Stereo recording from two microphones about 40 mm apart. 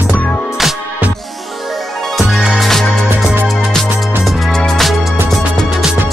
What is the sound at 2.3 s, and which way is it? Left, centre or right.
Music, centre.